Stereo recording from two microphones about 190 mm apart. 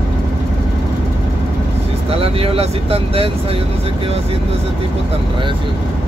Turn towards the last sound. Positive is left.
turn(degrees=-30)  # may be behind; listen again after turning